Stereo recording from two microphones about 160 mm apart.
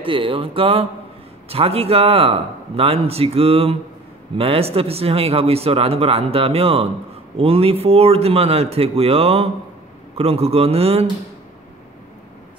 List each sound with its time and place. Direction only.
0.0 s speech: 35° right (ahead or behind)